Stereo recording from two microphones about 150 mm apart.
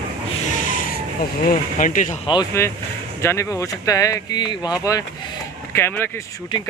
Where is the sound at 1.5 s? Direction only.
60° left (ahead or behind).